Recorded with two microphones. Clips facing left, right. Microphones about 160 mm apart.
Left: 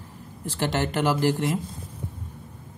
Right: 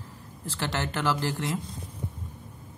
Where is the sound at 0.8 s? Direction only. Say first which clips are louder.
Left 5 dB; 15° left (ahead or behind).